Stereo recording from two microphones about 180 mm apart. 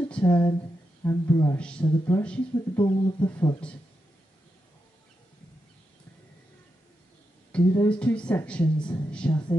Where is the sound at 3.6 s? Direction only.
5° left (ahead or behind).